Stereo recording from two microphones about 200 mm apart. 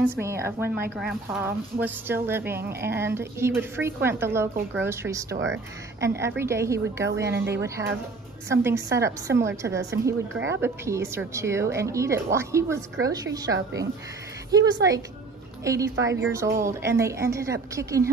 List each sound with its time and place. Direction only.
0.2 s a woman's voice: 15° right (ahead or behind)